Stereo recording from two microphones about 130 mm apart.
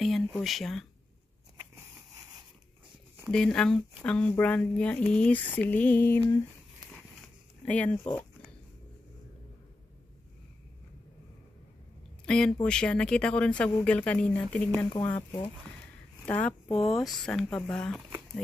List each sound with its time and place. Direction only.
0.0 s speech: centre (ahead or behind)
3.3 s speech: 5° left (ahead or behind)
7.6 s speech: 10° left (ahead or behind)
12.3 s speech: 5° left (ahead or behind)